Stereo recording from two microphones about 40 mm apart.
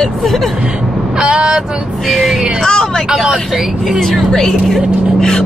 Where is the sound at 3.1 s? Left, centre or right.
Centre.